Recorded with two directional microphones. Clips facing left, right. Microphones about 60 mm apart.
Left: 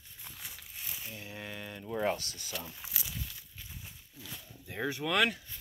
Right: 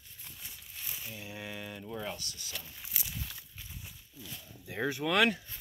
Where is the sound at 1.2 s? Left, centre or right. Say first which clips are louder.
Right 1 dB; centre.